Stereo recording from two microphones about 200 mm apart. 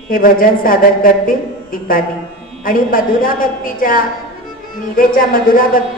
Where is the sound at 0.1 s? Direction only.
45° left (ahead or behind).